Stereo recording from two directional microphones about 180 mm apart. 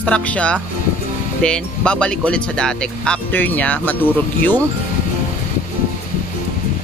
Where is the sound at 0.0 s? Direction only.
5° left (ahead or behind).